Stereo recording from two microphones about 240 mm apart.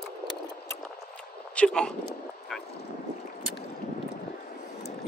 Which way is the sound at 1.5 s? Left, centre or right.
Centre.